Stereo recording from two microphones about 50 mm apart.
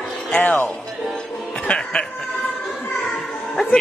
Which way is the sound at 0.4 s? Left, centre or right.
Left.